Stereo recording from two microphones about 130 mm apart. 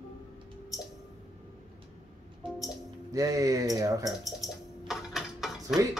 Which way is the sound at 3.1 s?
25° right (ahead or behind).